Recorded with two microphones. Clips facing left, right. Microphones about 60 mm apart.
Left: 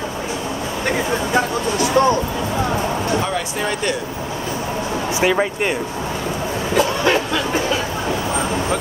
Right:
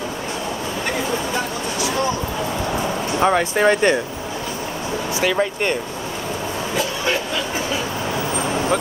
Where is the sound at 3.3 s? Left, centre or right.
Right.